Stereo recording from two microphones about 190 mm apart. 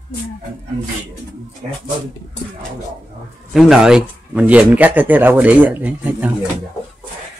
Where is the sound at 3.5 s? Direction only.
Centre (ahead or behind).